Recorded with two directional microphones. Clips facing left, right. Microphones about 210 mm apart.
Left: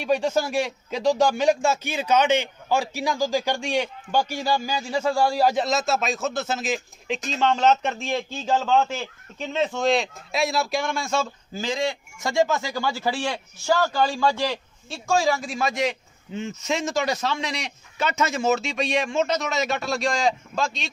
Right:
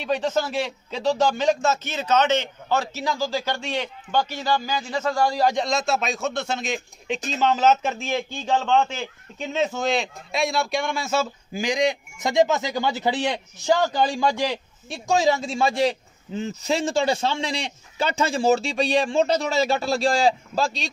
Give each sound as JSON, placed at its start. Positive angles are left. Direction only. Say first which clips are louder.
{"t": 0.0, "sound": "a man's voice", "louder": "left 1 dB", "side_deg": 10}